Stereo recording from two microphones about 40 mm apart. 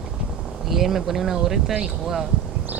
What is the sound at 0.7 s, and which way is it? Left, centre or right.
Speech, centre.